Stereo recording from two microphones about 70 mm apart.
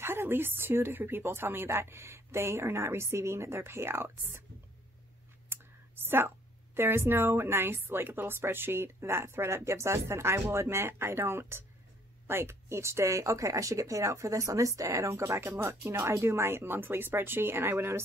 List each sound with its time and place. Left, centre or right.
0.0 s speech: right
5.5 s speech: right